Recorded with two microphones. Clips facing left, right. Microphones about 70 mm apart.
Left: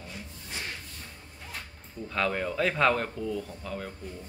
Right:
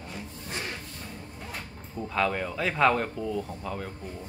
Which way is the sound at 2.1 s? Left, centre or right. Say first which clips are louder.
Right 1 dB; centre.